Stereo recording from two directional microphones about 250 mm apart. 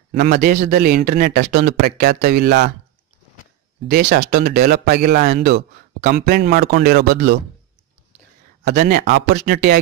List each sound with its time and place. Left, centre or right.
0.1 s speech: right
3.9 s speech: right
8.6 s speech: right